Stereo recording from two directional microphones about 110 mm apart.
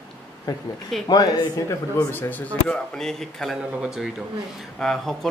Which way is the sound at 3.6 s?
10° right (ahead or behind).